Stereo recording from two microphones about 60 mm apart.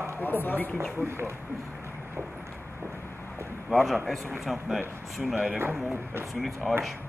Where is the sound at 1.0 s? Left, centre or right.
Right.